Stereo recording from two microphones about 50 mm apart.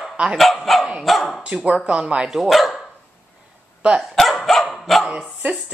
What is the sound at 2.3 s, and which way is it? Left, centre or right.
Speech, centre.